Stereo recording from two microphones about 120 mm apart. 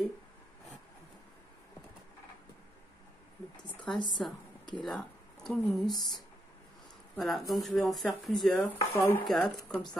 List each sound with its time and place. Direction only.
3.9 s a woman's voice: 40° left (ahead or behind)
4.8 s speech: 5° left (ahead or behind)
7.2 s speech: centre (ahead or behind)
8.6 s speech: 20° left (ahead or behind)
9.2 s speech: 5° left (ahead or behind)